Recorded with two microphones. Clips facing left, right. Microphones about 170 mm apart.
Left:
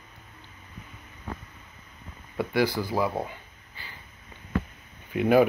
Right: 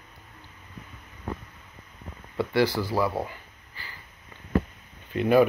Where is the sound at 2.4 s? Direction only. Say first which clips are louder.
Right 1 dB; 15° left (ahead or behind).